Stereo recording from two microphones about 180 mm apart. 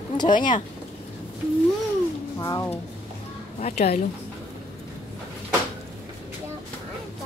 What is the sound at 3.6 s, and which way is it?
Speech, 35° left (ahead or behind).